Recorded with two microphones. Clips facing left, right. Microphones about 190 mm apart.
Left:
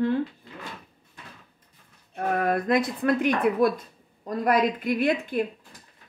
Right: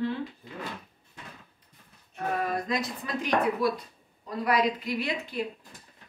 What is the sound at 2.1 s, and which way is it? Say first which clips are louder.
Speech: left 5 dB; 60° left (ahead or behind).